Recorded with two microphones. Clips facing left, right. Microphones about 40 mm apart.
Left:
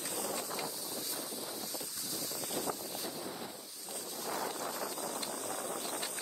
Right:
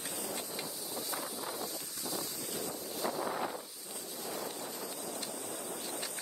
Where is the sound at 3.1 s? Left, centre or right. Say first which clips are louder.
Right 7 dB; right.